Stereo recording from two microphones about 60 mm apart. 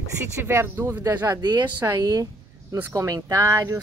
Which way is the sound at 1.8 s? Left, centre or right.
Right.